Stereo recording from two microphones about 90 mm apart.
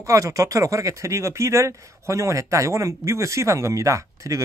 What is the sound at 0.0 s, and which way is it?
Speech, 35° right (ahead or behind).